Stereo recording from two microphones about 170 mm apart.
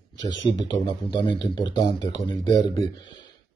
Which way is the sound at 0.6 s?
25° left (ahead or behind).